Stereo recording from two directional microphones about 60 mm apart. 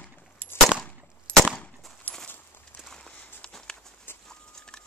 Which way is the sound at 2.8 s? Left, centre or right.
Centre.